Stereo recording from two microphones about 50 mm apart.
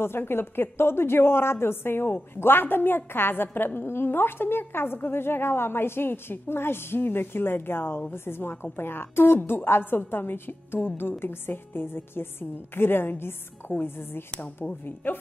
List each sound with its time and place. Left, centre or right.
0.0 s a woman's voice: left